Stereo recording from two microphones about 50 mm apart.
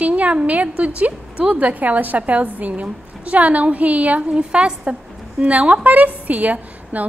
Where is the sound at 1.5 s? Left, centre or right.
Right.